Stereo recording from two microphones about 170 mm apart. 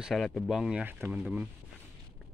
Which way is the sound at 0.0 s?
Centre (ahead or behind).